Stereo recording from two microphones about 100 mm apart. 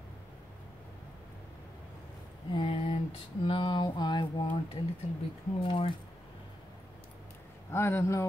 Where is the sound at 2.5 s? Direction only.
60° left (ahead or behind).